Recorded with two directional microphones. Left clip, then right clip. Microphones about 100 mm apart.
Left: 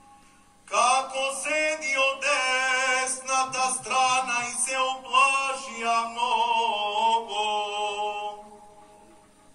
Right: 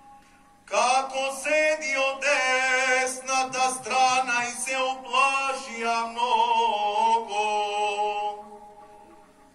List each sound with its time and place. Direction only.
0.7 s mantra: 20° right (ahead or behind)